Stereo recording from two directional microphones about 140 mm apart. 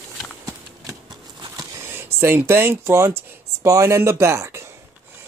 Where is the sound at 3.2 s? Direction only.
20° right (ahead or behind).